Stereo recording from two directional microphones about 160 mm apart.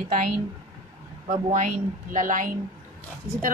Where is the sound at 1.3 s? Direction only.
50° right (ahead or behind).